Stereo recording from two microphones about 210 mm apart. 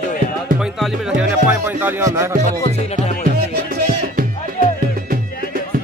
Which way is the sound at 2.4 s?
30° left (ahead or behind).